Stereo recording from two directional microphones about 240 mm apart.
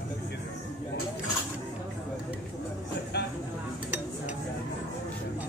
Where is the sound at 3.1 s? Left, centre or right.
Left.